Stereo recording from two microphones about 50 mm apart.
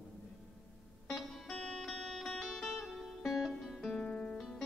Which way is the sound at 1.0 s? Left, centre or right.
Centre.